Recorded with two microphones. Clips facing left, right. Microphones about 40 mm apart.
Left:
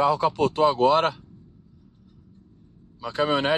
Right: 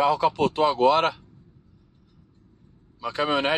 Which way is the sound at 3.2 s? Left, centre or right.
Right.